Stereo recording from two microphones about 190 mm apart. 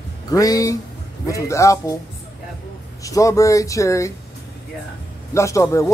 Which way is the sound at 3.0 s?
15° left (ahead or behind).